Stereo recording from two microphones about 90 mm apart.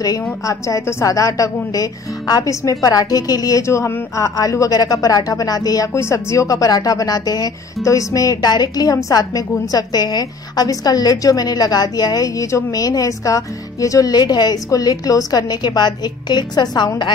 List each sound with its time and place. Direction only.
0.0 s a woman's voice: 40° left (ahead or behind)
5.9 s a woman's voice: 35° left (ahead or behind); by 16.9 s 55° left (ahead or behind)